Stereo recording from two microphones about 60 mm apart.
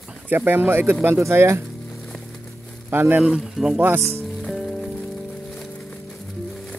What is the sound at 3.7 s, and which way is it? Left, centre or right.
Speech, right.